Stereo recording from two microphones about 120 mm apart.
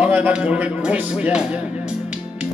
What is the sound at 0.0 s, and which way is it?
Speech, 10° right (ahead or behind).